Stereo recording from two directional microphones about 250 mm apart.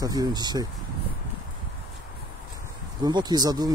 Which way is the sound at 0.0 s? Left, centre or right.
Centre.